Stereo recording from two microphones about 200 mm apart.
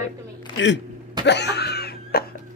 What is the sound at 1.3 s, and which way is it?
Laughter, 55° left (ahead or behind).